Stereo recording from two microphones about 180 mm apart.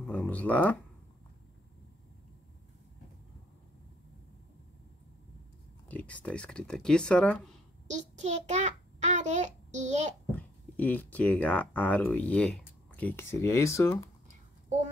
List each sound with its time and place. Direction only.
0.0 s speech: 10° left (ahead or behind)
5.9 s speech: 10° left (ahead or behind)
7.9 s a child's voice: 40° right (ahead or behind)
10.3 s speech: 10° left (ahead or behind)